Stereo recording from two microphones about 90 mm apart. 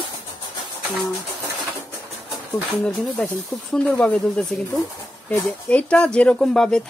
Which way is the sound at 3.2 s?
5° left (ahead or behind).